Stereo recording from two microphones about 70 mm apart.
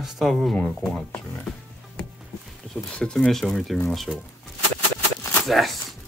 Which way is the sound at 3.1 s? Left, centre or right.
Centre.